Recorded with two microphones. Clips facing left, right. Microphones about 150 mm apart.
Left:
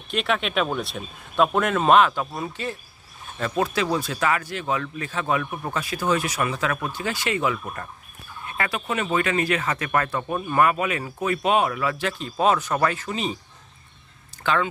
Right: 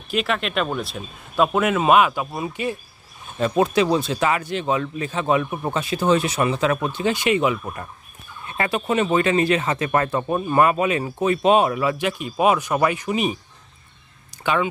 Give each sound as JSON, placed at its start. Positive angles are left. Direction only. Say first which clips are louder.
{"t": 0.1, "sound": "speech", "louder": "right 1 dB", "side_deg": 0}
{"t": 14.4, "sound": "speech", "louder": "right 2 dB", "side_deg": -15}